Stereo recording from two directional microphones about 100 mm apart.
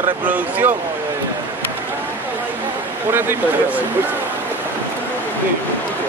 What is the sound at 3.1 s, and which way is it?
Speech, 20° right (ahead or behind).